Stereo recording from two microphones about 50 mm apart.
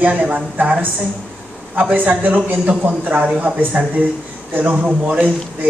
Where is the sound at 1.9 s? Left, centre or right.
Right.